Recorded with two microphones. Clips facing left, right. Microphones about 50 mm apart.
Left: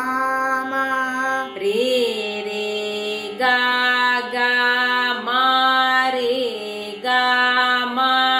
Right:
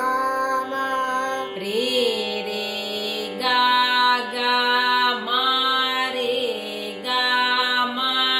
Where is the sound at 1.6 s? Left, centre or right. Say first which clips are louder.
Left 4 dB; right.